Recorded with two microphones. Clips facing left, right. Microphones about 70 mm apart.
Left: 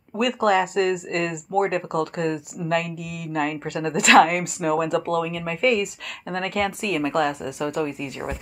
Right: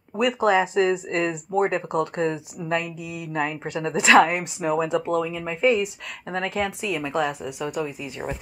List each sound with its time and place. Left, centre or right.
0.3 s speech: centre